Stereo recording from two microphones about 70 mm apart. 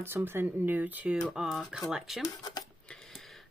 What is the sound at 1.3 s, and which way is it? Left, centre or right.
Speech, centre.